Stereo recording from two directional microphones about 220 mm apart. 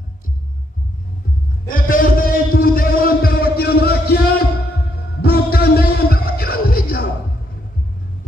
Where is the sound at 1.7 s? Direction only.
40° left (ahead or behind).